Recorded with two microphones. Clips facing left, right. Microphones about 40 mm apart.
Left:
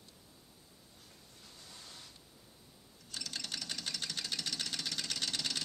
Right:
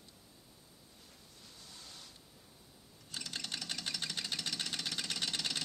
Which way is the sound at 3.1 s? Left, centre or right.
Centre.